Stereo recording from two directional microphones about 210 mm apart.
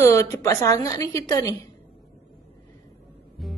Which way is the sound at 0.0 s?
15° left (ahead or behind).